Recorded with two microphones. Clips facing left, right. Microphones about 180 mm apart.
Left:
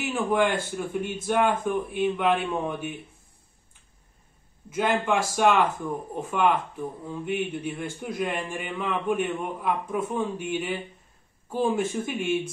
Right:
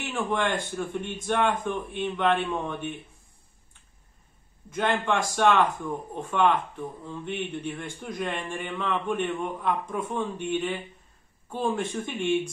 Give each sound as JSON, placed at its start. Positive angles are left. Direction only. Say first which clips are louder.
{"t": 0.0, "sound": "a man's voice", "louder": "left 4 dB", "side_deg": 5}
{"t": 4.6, "sound": "a man's voice", "louder": "left 2 dB", "side_deg": 5}